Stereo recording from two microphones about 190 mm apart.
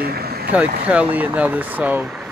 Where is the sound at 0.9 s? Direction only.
5° right (ahead or behind).